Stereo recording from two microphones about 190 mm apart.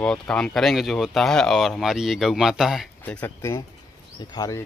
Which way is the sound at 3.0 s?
10° left (ahead or behind).